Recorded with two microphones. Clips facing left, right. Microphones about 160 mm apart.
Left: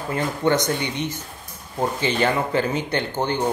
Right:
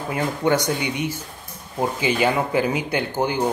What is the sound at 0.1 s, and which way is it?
Speech, 10° right (ahead or behind).